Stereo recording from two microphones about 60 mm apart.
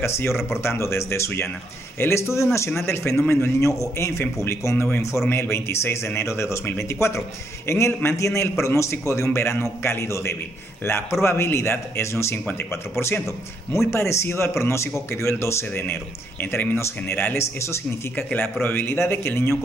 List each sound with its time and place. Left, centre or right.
0.0 s speech: left
3.6 s a man's voice: left
13.7 s speech: left
18.1 s speech: left